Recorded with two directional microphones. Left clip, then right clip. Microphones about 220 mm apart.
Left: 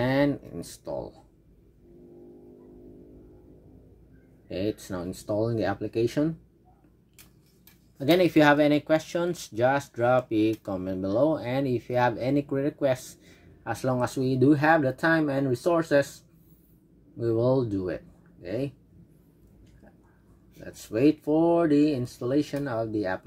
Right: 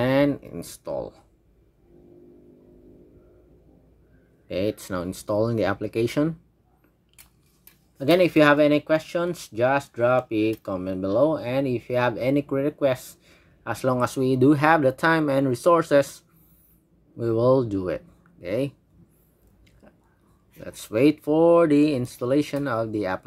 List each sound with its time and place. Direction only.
0.0 s a sound: 15° right (ahead or behind)
4.5 s speech: 25° right (ahead or behind)
8.0 s speech: 10° right (ahead or behind)
17.2 s speech: 20° right (ahead or behind)
20.6 s speech: 25° right (ahead or behind)